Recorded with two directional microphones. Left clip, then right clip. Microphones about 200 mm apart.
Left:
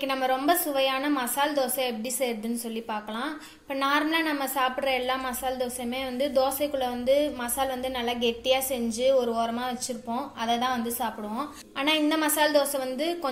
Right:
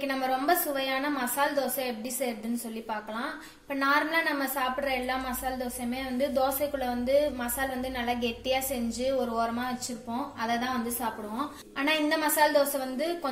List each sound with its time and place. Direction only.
0.0 s a woman's voice: 40° left (ahead or behind)
3.8 s a woman's voice: 40° left (ahead or behind)